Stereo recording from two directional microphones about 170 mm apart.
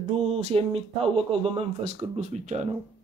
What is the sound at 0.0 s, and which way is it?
Speech, 35° right (ahead or behind).